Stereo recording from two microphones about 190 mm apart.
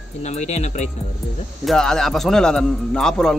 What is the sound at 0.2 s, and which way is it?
Speech, 35° left (ahead or behind).